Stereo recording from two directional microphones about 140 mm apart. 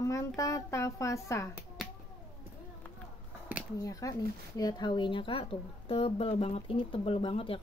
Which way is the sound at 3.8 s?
25° left (ahead or behind).